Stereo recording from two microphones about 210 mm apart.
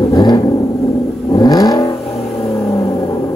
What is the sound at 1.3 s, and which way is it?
Accelerating, 15° left (ahead or behind).